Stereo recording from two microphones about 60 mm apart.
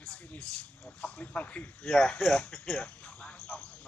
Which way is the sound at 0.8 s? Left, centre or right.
Left.